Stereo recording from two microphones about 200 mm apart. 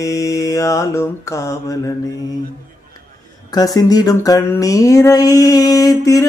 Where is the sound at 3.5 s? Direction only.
20° left (ahead or behind).